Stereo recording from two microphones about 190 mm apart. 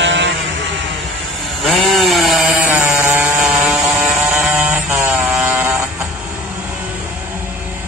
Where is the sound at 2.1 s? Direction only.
Centre (ahead or behind).